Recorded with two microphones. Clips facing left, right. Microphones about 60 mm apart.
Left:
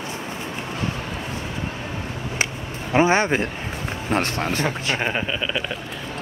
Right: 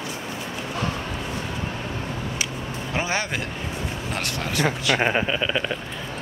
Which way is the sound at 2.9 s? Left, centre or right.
Left.